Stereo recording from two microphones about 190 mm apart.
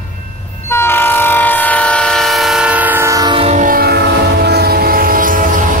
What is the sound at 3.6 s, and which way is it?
Train, 50° right (ahead or behind).